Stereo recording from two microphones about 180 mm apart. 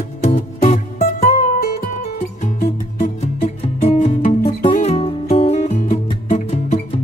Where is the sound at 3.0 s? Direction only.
45° left (ahead or behind).